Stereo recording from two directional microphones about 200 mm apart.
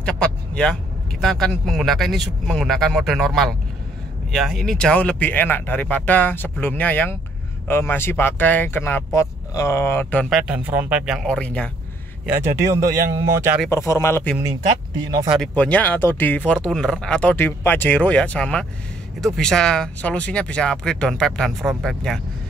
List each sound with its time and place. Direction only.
0.0 s vehicle: 5° left (ahead or behind)
1.2 s speech: centre (ahead or behind)
10.3 s speech: 5° right (ahead or behind)
12.3 s speech: 15° right (ahead or behind)
13.7 s speech: 15° left (ahead or behind)
15.2 s speech: 5° right (ahead or behind)
15.5 s speech: 5° left (ahead or behind)